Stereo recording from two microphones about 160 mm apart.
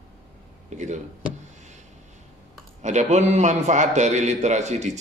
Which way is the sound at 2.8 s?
45° right (ahead or behind).